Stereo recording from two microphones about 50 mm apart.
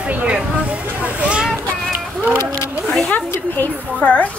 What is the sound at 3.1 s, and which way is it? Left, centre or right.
A woman's voice, left.